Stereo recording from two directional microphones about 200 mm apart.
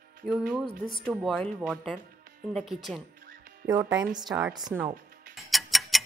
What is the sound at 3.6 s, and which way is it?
Speech, 55° right (ahead or behind).